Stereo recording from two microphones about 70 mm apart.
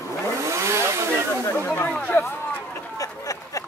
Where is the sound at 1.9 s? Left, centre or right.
Centre.